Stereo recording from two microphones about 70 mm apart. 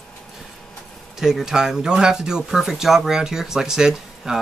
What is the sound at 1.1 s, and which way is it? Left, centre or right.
Speech, centre.